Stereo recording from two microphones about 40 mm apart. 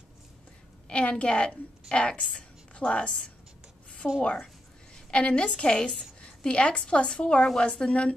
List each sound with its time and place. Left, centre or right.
0.8 s a woman's voice: left
4.2 s a woman's voice: left
4.9 s a sound: left
5.6 s a woman's voice: left